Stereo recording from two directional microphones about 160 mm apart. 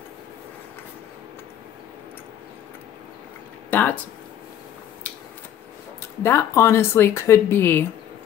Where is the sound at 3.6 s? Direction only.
10° left (ahead or behind).